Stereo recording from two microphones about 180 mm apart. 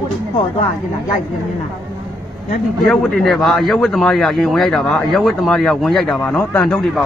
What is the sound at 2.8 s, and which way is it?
Speech, centre (ahead or behind).